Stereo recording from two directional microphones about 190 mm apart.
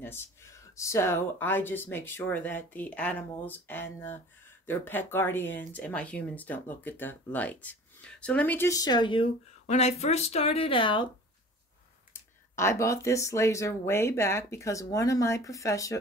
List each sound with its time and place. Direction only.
0.0 s speech: 10° left (ahead or behind)
12.1 s speech: 15° left (ahead or behind)